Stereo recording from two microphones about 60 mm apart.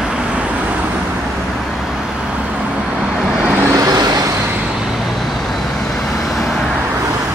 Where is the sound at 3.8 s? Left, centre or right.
Right.